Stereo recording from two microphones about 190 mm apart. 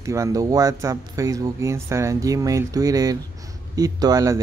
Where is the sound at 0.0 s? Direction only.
15° right (ahead or behind).